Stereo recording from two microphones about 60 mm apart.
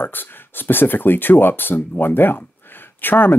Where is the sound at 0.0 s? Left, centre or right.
Left.